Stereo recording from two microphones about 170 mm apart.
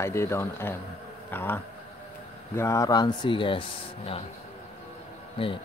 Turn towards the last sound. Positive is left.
turn(degrees=30)  # may be behind; listen again after turning